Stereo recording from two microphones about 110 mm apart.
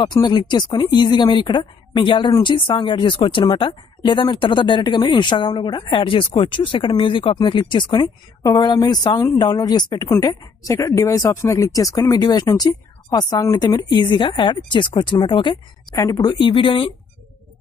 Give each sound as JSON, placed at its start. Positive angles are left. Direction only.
{"t": 0.0, "sound": "a woman's voice", "side_deg": 40}
{"t": 10.1, "sound": "speech", "side_deg": 25}
{"t": 13.8, "sound": "a woman's voice", "side_deg": 45}
{"t": 16.0, "sound": "a woman's voice", "side_deg": 35}